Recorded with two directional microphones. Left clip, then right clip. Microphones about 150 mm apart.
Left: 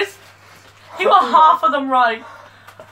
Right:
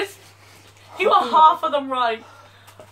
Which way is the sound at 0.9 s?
20° left (ahead or behind).